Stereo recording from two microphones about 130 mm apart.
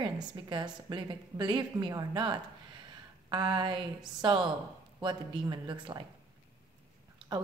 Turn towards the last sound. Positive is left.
turn(degrees=-35)  # may be behind; listen again after turning